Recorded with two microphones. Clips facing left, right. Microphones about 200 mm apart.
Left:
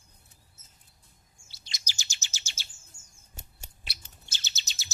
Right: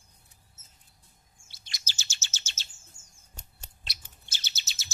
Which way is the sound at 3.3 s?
5° left (ahead or behind).